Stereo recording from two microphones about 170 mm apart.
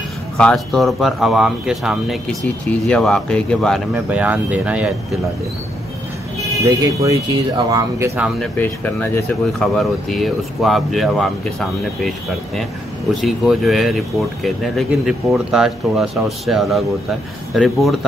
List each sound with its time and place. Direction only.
0.4 s speech: 5° left (ahead or behind)
6.6 s speech: 20° right (ahead or behind)
8.5 s speech: 10° left (ahead or behind)
13.1 s speech: centre (ahead or behind)